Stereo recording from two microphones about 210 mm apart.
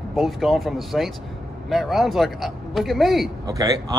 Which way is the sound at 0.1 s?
Centre (ahead or behind).